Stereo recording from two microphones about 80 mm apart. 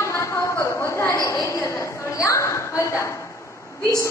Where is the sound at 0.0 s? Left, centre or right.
Left.